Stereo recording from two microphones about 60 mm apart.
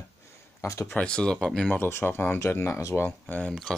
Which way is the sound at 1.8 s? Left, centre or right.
Left.